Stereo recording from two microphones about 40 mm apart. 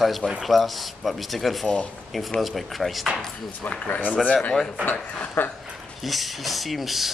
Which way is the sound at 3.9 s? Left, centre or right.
Left.